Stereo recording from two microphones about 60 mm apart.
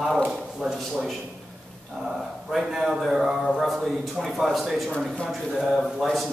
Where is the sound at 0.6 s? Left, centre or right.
Centre.